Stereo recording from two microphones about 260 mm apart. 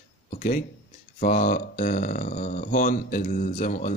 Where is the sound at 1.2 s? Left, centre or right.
Left.